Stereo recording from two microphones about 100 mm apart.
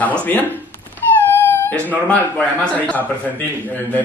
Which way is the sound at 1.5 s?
20° left (ahead or behind).